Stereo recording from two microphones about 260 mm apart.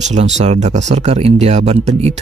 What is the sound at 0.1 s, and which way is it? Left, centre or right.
Speech, right.